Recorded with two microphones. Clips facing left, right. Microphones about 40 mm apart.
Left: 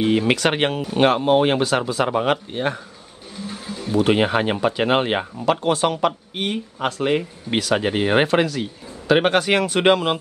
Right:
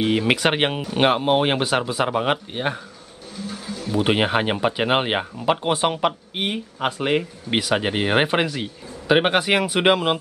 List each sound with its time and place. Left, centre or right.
0.0 s speech: centre
3.4 s a sound: centre
4.0 s speech: centre